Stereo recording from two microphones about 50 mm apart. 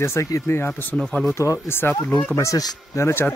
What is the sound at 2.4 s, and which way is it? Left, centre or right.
Speech, left.